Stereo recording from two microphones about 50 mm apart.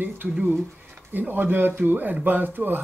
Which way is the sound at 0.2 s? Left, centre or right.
Right.